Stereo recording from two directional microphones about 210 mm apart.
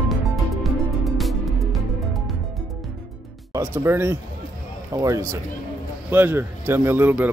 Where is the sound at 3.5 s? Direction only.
10° right (ahead or behind).